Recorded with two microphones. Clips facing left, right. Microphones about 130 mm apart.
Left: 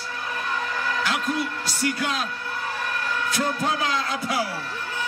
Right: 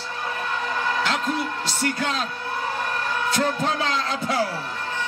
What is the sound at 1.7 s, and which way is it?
Speech, 10° left (ahead or behind).